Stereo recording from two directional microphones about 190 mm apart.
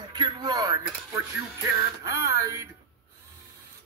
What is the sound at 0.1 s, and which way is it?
Speech, 20° right (ahead or behind).